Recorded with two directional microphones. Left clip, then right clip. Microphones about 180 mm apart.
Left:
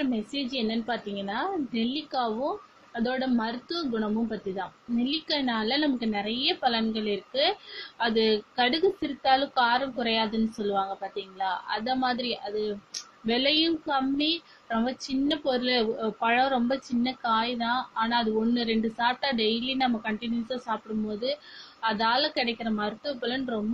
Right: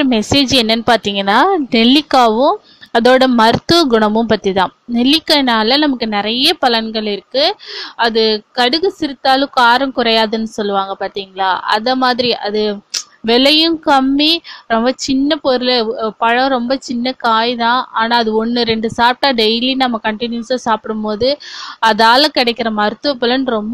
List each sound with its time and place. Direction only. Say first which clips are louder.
0.0 s a woman's voice: right 18 dB; 55° right (ahead or behind)